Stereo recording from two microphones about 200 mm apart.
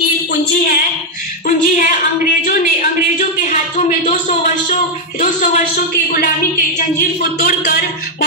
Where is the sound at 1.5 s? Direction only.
40° left (ahead or behind).